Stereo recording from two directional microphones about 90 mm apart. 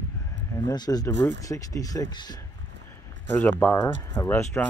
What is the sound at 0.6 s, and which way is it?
Speech, 45° left (ahead or behind).